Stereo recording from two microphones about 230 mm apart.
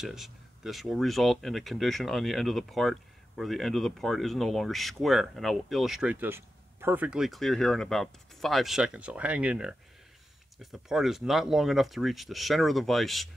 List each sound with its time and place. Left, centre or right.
0.0 s speech: centre